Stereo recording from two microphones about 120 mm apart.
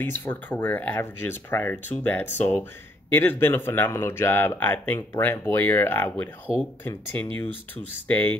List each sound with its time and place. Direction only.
0.0 s speech: 15° left (ahead or behind)